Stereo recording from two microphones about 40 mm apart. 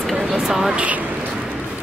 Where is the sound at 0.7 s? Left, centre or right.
Right.